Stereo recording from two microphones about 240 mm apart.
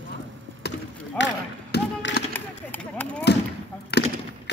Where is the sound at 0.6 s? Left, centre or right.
Left.